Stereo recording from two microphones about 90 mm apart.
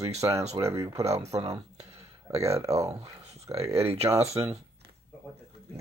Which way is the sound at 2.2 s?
35° right (ahead or behind).